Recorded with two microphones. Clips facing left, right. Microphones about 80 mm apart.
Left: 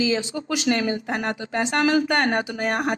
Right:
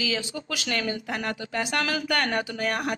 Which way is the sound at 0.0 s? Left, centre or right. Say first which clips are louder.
Left 6 dB; left.